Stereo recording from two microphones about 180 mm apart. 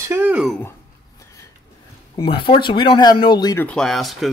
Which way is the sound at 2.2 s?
30° left (ahead or behind).